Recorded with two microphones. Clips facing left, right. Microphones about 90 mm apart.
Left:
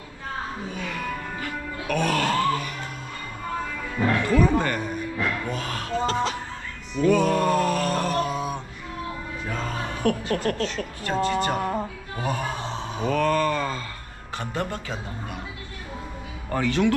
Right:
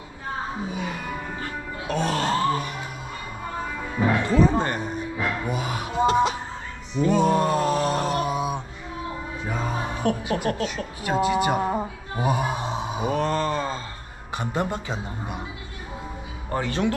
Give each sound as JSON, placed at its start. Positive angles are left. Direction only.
{"t": 0.7, "sound": "music", "side_deg": -15}
{"t": 3.6, "sound": "music", "side_deg": -15}
{"t": 5.1, "sound": "music", "side_deg": -10}
{"t": 7.0, "sound": "a sound", "side_deg": -20}
{"t": 9.4, "sound": "speech", "side_deg": -10}
{"t": 13.2, "sound": "a sound", "side_deg": -25}
{"t": 14.4, "sound": "a man's voice", "side_deg": -15}
{"t": 16.5, "sound": "speech", "side_deg": -20}